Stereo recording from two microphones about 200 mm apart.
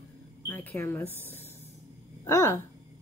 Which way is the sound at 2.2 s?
15° left (ahead or behind).